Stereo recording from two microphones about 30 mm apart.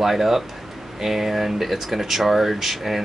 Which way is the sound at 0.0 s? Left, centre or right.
Centre.